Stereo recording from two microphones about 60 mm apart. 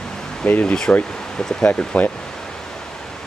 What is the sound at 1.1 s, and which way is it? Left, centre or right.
Speech, centre.